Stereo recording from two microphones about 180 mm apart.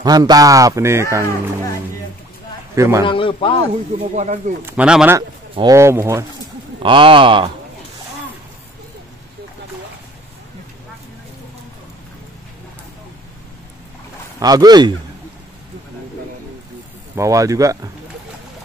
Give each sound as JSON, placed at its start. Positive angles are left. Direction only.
{"t": 0.0, "sound": "speech", "side_deg": -20}
{"t": 2.7, "sound": "a man's voice", "side_deg": -15}
{"t": 3.1, "sound": "speech", "side_deg": 30}
{"t": 4.1, "sound": "speech", "side_deg": -40}
{"t": 4.6, "sound": "speech", "side_deg": -5}
{"t": 5.6, "sound": "speech", "side_deg": -15}
{"t": 6.8, "sound": "speech", "side_deg": -30}
{"t": 14.4, "sound": "speech", "side_deg": -20}
{"t": 17.1, "sound": "speech", "side_deg": -15}